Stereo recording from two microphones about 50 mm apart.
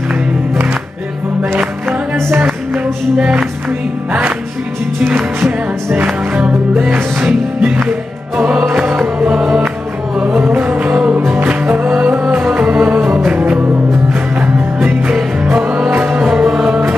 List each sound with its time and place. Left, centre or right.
2.1 s music: right
2.7 s music: right
6.9 s music: right
8.4 s music: right
10.5 s music: right
11.3 s music: right
13.3 s music: right
16.0 s music: right
16.3 s music: centre